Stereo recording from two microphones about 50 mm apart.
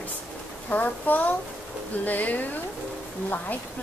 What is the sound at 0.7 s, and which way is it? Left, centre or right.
A woman's voice, left.